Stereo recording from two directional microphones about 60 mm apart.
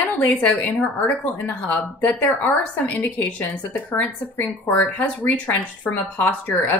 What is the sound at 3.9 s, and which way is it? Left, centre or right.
Speech, left.